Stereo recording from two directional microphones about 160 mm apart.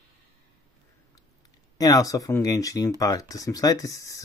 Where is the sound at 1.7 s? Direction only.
25° left (ahead or behind).